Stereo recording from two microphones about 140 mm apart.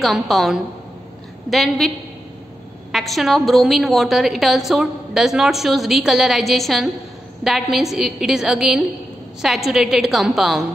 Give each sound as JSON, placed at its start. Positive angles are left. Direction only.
{"t": 0.0, "sound": "a woman's voice", "side_deg": 0}
{"t": 2.9, "sound": "a woman's voice", "side_deg": 0}